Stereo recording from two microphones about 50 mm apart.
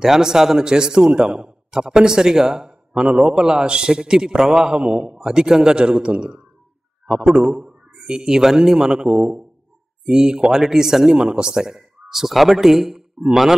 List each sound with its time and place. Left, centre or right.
0.0 s speech: centre
7.4 s speech: centre
10.0 s speech: centre